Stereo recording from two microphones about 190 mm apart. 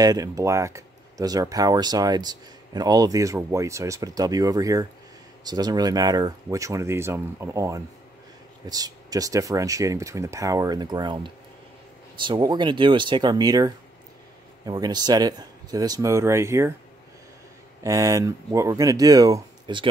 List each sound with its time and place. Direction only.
0.0 s speech: 20° right (ahead or behind)
17.8 s speech: 15° right (ahead or behind)